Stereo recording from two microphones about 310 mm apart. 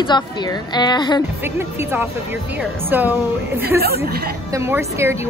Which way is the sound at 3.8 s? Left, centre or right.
Right.